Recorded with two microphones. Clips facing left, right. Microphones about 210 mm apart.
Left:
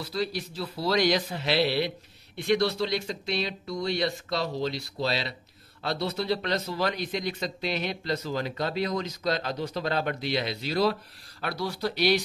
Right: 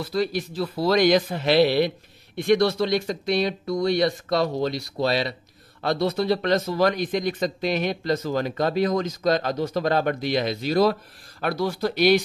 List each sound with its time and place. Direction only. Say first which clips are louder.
0.0 s speech: right 6 dB; 50° right (ahead or behind)
3.1 s speech: right 7 dB; 50° right (ahead or behind)